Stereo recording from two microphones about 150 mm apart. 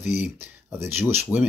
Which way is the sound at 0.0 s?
55° left (ahead or behind).